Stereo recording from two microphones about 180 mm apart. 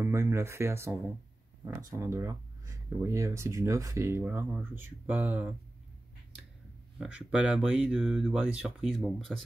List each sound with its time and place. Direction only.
0.0 s speech: 15° right (ahead or behind)
7.0 s speech: 5° right (ahead or behind)